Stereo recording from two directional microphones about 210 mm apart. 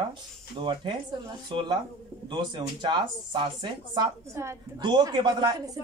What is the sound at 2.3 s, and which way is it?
Speech, 20° right (ahead or behind).